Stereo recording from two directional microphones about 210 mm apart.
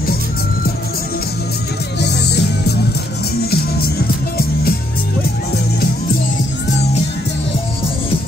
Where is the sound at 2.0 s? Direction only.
50° left (ahead or behind).